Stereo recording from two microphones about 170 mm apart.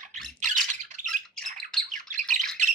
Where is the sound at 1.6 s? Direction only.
5° left (ahead or behind).